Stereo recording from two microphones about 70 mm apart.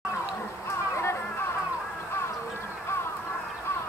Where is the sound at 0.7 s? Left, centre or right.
Left.